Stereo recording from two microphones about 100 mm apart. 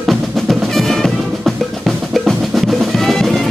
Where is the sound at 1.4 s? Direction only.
Centre (ahead or behind).